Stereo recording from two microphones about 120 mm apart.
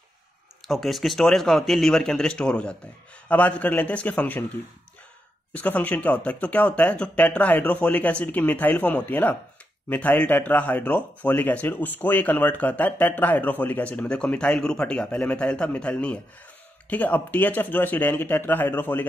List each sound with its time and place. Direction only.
0.7 s a man's voice: centre (ahead or behind)
5.5 s speech: 15° left (ahead or behind)